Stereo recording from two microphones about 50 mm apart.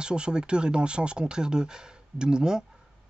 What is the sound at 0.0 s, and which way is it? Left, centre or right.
Speech, centre.